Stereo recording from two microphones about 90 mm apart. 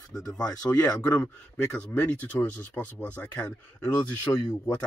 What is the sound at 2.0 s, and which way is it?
Speech, 20° left (ahead or behind).